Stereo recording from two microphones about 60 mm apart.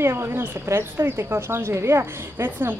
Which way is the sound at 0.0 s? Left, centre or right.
Right.